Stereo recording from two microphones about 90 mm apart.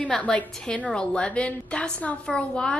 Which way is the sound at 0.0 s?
15° left (ahead or behind).